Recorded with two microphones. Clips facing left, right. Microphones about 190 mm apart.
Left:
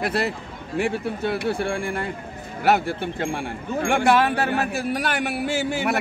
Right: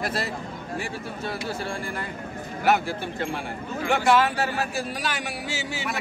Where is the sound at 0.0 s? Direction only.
60° left (ahead or behind).